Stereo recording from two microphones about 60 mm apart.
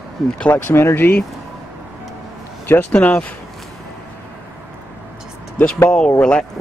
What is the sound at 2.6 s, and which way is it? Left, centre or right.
Speech, left.